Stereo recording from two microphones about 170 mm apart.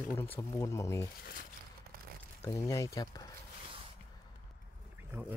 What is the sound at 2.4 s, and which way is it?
Speech, 20° left (ahead or behind).